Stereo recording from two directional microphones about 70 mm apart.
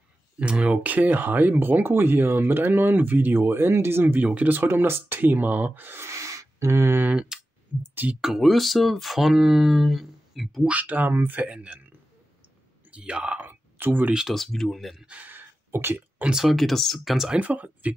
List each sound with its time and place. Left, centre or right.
0.4 s speech: centre
6.0 s a sound: right
7.1 s speech: centre
7.8 s speech: right
8.1 s speech: centre
10.7 s speech: right
11.4 s speech: centre
12.9 s speech: centre
14.1 s speech: centre
15.0 s a sound: right
16.3 s speech: centre
17.3 s speech: right